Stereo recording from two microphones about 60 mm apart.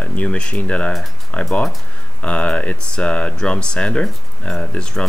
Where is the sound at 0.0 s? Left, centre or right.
Left.